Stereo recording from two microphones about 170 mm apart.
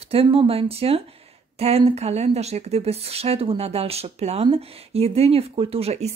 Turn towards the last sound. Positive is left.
turn(degrees=-40)  # may be behind; listen again after turning